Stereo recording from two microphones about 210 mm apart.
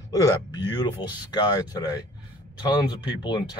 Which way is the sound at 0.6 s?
20° left (ahead or behind).